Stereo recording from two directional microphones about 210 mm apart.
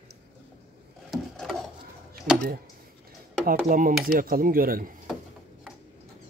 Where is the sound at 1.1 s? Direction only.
Centre (ahead or behind).